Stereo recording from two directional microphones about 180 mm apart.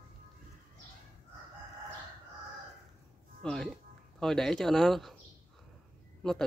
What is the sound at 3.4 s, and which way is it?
A man's voice, 5° left (ahead or behind).